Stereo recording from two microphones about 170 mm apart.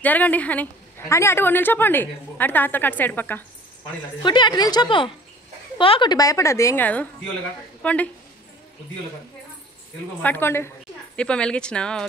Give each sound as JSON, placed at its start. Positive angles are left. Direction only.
{"t": 0.0, "sound": "a woman's voice", "side_deg": 10}
{"t": 4.2, "sound": "a woman's voice", "side_deg": 25}
{"t": 10.2, "sound": "a woman's voice", "side_deg": 15}